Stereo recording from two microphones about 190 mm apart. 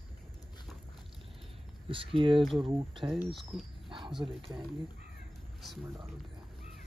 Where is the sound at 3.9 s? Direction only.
25° right (ahead or behind).